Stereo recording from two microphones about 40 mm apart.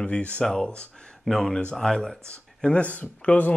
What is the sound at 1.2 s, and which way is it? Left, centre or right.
Speech, centre.